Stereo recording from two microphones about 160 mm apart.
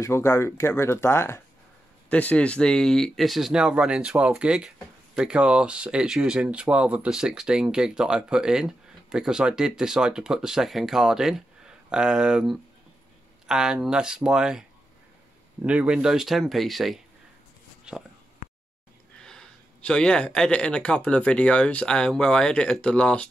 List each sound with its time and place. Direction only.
0.0 s speech: 15° left (ahead or behind); by 14.6 s 5° right (ahead or behind)
15.6 s speech: 10° right (ahead or behind)
19.2 s speech: 5° left (ahead or behind)